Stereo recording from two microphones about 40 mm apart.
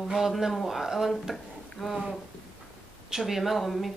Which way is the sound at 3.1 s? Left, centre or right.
Centre.